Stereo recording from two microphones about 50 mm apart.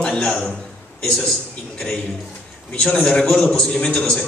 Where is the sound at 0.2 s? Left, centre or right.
Centre.